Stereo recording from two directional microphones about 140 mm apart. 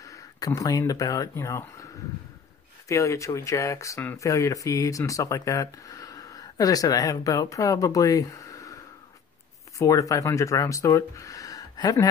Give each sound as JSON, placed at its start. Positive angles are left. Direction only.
{"t": 0.0, "sound": "speech", "side_deg": 25}
{"t": 2.9, "sound": "speech", "side_deg": 20}
{"t": 9.8, "sound": "speech", "side_deg": 25}